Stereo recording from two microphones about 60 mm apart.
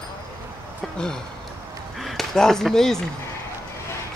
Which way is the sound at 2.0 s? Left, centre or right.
Centre.